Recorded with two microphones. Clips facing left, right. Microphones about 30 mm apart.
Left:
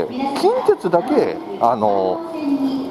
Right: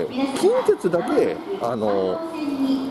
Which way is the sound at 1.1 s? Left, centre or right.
Left.